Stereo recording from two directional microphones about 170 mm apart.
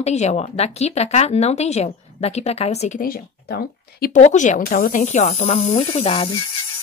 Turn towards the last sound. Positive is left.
turn(degrees=35)  # may be behind; listen again after turning